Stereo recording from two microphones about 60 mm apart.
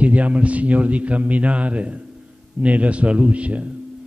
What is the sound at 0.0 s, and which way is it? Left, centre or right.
A man's voice, right.